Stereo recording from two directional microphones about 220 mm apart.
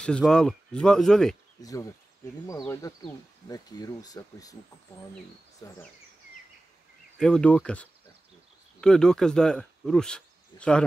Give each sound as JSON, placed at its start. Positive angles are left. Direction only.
{"t": 0.0, "sound": "speech", "side_deg": 5}
{"t": 1.6, "sound": "speech", "side_deg": 15}
{"t": 7.2, "sound": "speech", "side_deg": 5}